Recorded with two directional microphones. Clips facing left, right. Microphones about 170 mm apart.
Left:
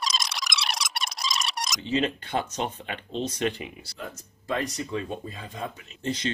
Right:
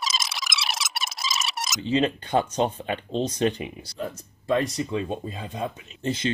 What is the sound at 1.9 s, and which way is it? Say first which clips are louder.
Speech: right 4 dB; 30° right (ahead or behind).